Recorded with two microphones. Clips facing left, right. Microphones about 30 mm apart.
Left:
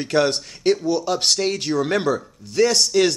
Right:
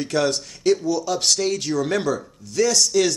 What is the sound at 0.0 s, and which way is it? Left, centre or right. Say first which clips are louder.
Speech: left 2 dB; left.